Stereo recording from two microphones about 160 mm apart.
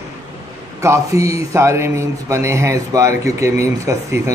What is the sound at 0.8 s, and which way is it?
Speech, 20° right (ahead or behind).